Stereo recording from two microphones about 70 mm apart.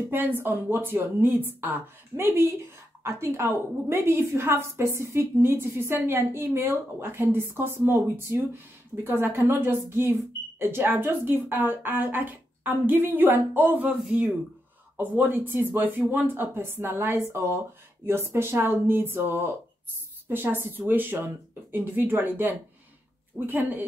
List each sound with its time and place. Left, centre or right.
0.1 s a woman's voice: right
15.0 s a woman's voice: right